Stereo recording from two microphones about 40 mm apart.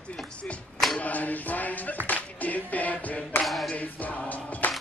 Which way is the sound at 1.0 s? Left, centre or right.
Left.